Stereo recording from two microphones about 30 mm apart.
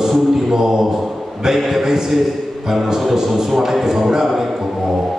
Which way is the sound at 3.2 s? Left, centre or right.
Centre.